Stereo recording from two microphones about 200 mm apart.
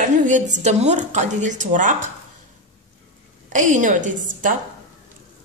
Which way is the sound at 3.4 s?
40° right (ahead or behind).